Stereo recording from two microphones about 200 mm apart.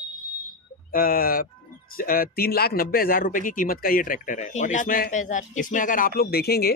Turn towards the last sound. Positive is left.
turn(degrees=50)  # may be behind; listen again after turning